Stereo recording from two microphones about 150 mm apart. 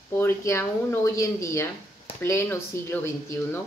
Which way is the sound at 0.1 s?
15° left (ahead or behind).